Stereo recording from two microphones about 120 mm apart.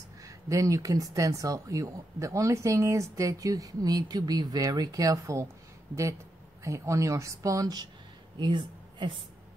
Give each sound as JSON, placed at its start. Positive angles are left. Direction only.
{"t": 0.2, "sound": "speech", "side_deg": -25}
{"t": 6.6, "sound": "a woman's voice", "side_deg": -25}